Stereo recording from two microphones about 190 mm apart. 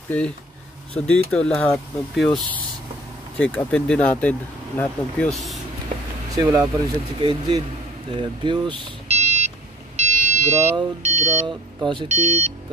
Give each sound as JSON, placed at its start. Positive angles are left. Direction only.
{"t": 0.1, "sound": "speech", "side_deg": 10}
{"t": 6.3, "sound": "speech", "side_deg": -15}
{"t": 8.2, "sound": "car alarm", "side_deg": -25}
{"t": 9.9, "sound": "a sound", "side_deg": -40}
{"t": 11.4, "sound": "speech", "side_deg": -25}
{"t": 12.1, "sound": "speech", "side_deg": -35}